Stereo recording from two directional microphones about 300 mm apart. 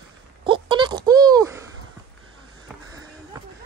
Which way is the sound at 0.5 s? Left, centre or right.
Centre.